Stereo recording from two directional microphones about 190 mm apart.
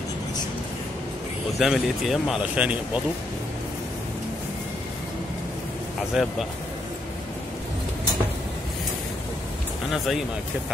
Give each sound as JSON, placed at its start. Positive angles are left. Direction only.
{"t": 1.6, "sound": "speech", "side_deg": 0}
{"t": 6.2, "sound": "speech", "side_deg": -5}
{"t": 9.8, "sound": "speech", "side_deg": 0}